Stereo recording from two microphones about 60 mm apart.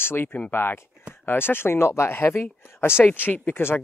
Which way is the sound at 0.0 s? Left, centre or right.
Left.